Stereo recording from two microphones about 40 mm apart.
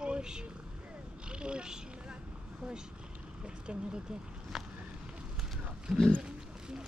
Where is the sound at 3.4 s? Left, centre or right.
Right.